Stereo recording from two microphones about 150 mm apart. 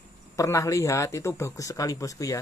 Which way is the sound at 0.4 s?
20° left (ahead or behind).